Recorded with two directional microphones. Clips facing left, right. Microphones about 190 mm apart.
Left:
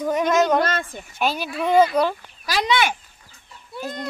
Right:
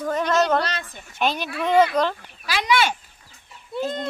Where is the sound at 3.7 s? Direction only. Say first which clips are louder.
Right 4 dB; 25° right (ahead or behind).